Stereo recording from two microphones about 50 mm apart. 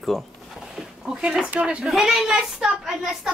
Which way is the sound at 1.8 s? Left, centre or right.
Centre.